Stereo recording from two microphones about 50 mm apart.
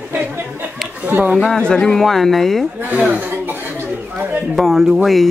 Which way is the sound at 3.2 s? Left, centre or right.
Right.